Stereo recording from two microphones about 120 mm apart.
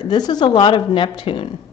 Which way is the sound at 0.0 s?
35° left (ahead or behind).